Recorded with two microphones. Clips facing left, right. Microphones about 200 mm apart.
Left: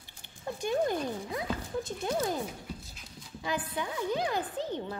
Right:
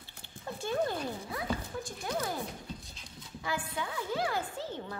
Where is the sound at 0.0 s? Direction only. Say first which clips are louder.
Left 4 dB; 15° left (ahead or behind).